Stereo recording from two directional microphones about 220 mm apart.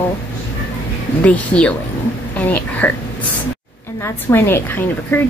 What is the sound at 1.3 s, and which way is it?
A woman's voice, 5° left (ahead or behind).